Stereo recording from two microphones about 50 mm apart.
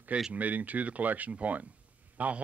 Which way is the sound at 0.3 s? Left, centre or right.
Right.